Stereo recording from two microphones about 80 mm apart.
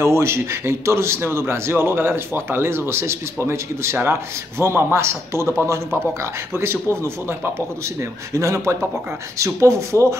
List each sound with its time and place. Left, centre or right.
0.0 s a man's voice: right